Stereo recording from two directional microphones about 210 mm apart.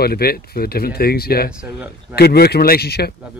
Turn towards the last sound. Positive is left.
turn(degrees=50)  # may be behind; listen again after turning